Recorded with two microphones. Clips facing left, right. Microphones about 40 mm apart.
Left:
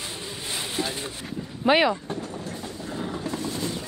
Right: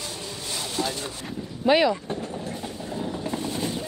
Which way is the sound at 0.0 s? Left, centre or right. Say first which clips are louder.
Even; left.